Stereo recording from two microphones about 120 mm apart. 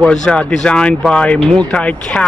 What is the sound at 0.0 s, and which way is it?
Speech, 5° left (ahead or behind).